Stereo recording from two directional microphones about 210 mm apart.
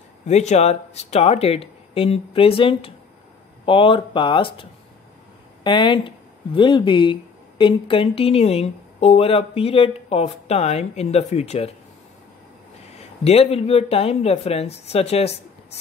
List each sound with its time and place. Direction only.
0.3 s speech: 35° left (ahead or behind)
12.9 s speech: 30° left (ahead or behind)